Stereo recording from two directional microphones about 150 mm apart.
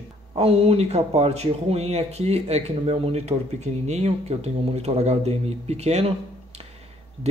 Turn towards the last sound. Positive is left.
turn(degrees=-45)  # may be behind; listen again after turning